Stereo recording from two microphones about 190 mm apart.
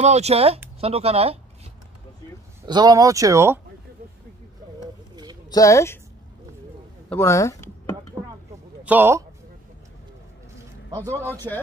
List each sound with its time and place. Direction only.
0.0 s speech: 35° right (ahead or behind)
2.6 s speech: 20° right (ahead or behind)
5.1 s a sound: 20° right (ahead or behind)
5.5 s speech: 15° left (ahead or behind)
7.1 s speech: 15° left (ahead or behind)
8.8 s speech: 10° right (ahead or behind)